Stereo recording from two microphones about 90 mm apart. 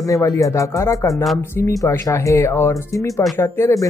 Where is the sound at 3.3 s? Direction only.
25° left (ahead or behind).